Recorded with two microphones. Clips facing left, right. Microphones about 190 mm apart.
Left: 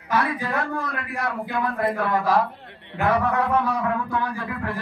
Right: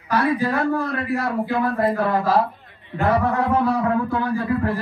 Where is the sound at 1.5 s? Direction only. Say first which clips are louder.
Right 4 dB; 30° right (ahead or behind).